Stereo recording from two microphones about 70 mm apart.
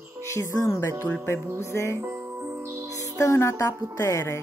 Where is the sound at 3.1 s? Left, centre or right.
Left.